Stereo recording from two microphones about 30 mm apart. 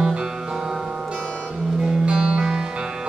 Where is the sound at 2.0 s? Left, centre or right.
Right.